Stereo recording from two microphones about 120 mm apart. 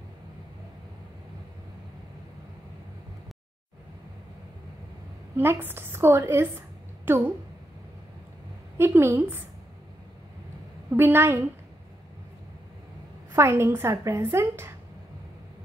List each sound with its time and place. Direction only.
5.4 s a woman's voice: 20° right (ahead or behind)
8.7 s a woman's voice: 20° right (ahead or behind)
10.9 s a woman's voice: 15° right (ahead or behind)
13.3 s a woman's voice: 20° right (ahead or behind)